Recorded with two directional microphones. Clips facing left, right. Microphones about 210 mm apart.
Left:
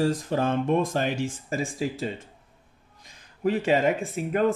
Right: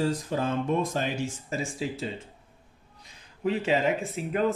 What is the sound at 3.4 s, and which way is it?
Speech, 50° left (ahead or behind).